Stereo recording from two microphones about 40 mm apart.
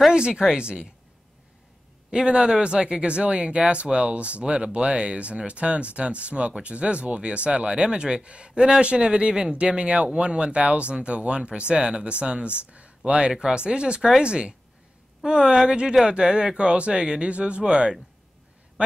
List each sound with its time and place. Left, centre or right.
0.1 s speech: right
2.0 s speech: right